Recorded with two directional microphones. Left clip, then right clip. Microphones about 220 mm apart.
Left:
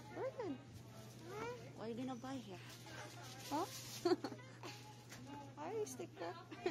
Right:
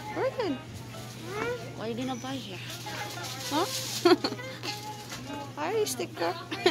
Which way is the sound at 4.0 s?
Centre (ahead or behind).